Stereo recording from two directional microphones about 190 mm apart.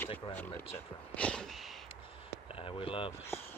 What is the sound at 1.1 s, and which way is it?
Speech, 5° left (ahead or behind).